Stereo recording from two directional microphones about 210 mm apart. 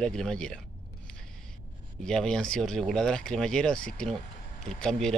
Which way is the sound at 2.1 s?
5° left (ahead or behind).